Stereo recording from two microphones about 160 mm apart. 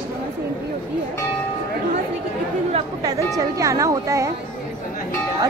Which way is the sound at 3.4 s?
20° right (ahead or behind).